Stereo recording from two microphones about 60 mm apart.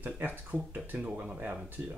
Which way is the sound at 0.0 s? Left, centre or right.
Right.